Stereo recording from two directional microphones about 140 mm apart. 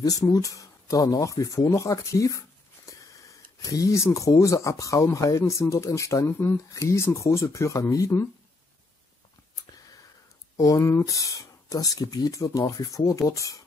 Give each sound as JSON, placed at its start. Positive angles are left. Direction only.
{"t": 0.0, "sound": "speech", "side_deg": 25}
{"t": 10.6, "sound": "speech", "side_deg": 20}